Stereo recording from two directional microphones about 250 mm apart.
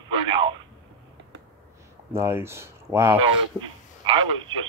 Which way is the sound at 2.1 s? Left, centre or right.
Centre.